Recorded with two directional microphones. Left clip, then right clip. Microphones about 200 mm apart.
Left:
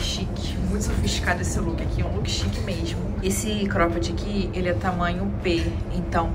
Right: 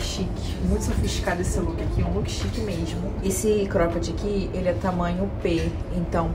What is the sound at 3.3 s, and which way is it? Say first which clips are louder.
Speech: right 4 dB; 30° right (ahead or behind).